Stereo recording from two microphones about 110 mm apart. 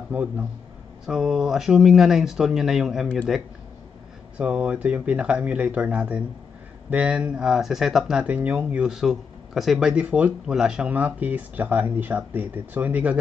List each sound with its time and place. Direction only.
0.1 s speech: 10° right (ahead or behind)
4.4 s speech: 10° right (ahead or behind)